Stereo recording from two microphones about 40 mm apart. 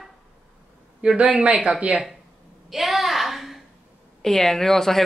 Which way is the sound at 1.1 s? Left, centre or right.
Right.